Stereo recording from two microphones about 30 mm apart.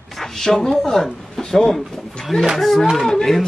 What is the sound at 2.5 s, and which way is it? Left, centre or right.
Speech, centre.